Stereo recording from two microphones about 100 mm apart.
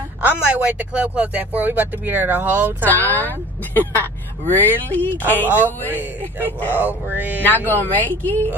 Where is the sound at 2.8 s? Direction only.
20° left (ahead or behind).